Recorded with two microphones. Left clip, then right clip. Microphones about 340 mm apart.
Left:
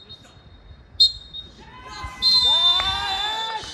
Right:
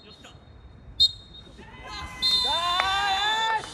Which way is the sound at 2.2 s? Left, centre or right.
Right.